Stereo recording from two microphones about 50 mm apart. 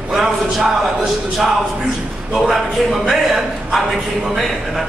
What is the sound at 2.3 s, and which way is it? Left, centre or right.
A man's voice, centre.